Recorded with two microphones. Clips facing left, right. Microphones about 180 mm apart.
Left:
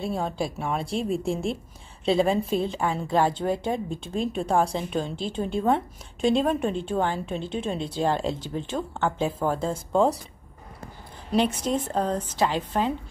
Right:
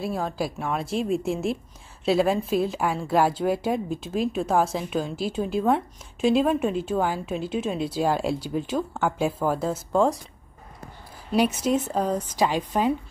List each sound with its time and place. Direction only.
0.0 s a woman's voice: centre (ahead or behind)
11.3 s speech: 10° right (ahead or behind)